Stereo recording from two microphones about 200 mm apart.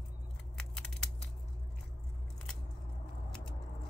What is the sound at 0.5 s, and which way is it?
Scissors, centre (ahead or behind).